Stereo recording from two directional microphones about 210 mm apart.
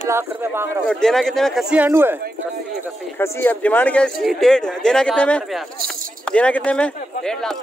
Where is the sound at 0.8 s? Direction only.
Centre (ahead or behind).